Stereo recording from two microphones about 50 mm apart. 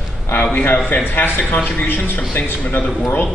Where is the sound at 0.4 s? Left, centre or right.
Left.